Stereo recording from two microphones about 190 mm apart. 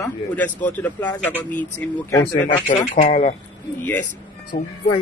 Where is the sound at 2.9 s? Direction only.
35° left (ahead or behind).